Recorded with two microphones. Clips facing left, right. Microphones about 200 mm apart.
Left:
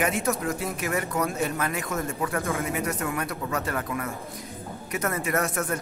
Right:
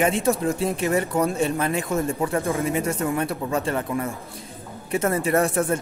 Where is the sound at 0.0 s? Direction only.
30° right (ahead or behind).